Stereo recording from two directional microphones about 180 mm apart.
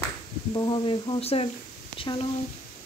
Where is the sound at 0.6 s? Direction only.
25° left (ahead or behind).